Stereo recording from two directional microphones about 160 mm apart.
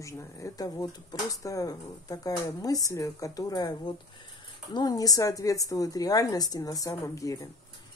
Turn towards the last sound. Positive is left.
turn(degrees=20)  # may be behind; listen again after turning